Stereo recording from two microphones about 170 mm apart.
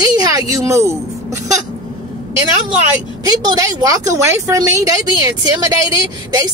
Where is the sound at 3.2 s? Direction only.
25° right (ahead or behind).